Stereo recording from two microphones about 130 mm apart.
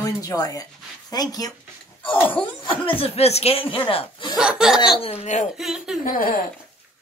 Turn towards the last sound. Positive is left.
turn(degrees=90)